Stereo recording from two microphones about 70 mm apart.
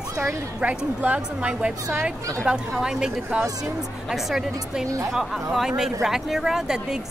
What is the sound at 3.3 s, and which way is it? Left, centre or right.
Speech, centre.